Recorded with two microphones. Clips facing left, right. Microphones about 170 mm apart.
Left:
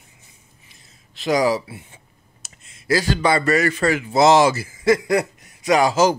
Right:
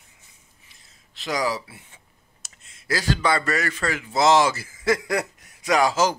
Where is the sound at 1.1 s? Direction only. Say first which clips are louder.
Left 7 dB; 15° left (ahead or behind).